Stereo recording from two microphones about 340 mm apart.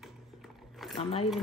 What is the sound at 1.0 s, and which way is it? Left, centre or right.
Music, centre.